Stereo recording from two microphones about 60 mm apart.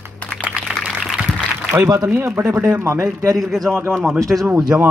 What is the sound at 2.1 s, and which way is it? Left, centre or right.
Speech, right.